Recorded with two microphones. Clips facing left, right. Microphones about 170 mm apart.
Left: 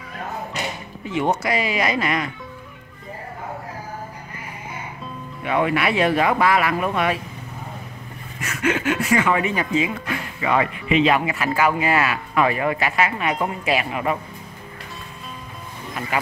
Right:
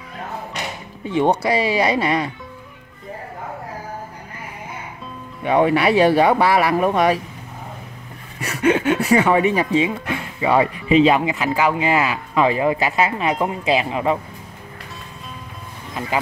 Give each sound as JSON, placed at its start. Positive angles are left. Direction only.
{"t": 1.0, "sound": "speech", "side_deg": -30}
{"t": 5.4, "sound": "speech", "side_deg": -35}
{"t": 8.4, "sound": "speech", "side_deg": -35}